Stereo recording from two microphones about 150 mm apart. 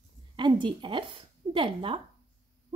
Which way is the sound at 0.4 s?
30° right (ahead or behind).